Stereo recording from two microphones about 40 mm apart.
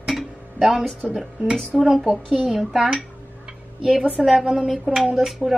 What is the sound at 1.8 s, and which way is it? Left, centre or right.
A woman's voice, centre.